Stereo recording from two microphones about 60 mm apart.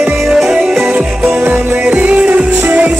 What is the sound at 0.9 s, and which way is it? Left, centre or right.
Music, right.